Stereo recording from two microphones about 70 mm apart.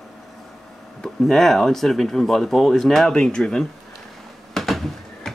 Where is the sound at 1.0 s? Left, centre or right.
Centre.